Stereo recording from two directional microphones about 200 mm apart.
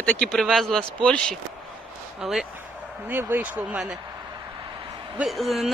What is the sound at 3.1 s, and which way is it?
Speech, 10° right (ahead or behind).